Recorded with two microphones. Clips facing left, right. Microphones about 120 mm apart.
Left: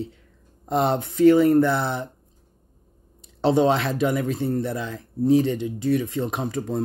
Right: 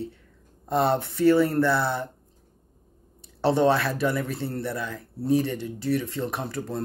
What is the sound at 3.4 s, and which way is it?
Speech, 20° left (ahead or behind).